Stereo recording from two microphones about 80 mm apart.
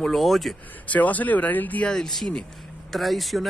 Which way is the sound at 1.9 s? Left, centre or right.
Centre.